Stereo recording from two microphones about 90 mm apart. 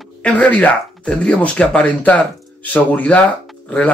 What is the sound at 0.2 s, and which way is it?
Speech, 15° left (ahead or behind).